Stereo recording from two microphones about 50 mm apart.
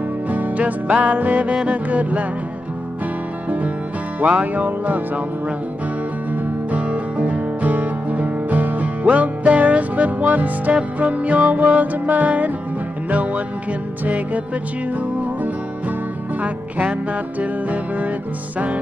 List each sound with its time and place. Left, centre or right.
0.3 s music: right
4.2 s music: right
6.7 s music: right
16.4 s music: right